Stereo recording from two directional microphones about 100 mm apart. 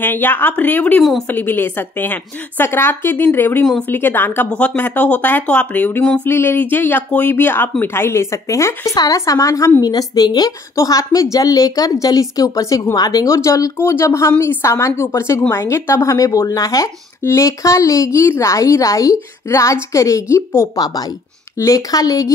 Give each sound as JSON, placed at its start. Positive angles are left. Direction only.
{"t": 0.0, "sound": "a woman's voice", "side_deg": 20}
{"t": 20.7, "sound": "speech", "side_deg": 40}